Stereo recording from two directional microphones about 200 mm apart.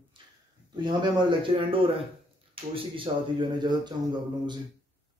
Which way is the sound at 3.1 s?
25° right (ahead or behind).